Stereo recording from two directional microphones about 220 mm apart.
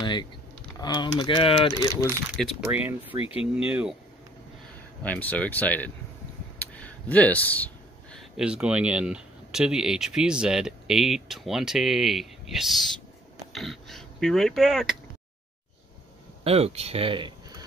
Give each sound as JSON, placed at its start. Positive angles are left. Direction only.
{"t": 0.0, "sound": "typing", "side_deg": 20}
{"t": 0.7, "sound": "speech", "side_deg": 20}
{"t": 2.3, "sound": "speech", "side_deg": 0}
{"t": 3.2, "sound": "speech", "side_deg": 25}
{"t": 3.5, "sound": "speech", "side_deg": -5}
{"t": 5.0, "sound": "speech", "side_deg": 5}
{"t": 6.6, "sound": "a sound", "side_deg": 5}
{"t": 8.4, "sound": "speech", "side_deg": -5}
{"t": 16.4, "sound": "speech", "side_deg": -25}